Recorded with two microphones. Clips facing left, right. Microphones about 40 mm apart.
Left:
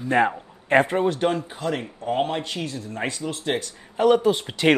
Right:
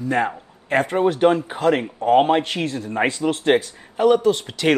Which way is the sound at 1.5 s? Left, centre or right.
Right.